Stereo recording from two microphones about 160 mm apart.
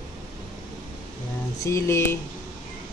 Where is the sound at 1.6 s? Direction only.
20° left (ahead or behind).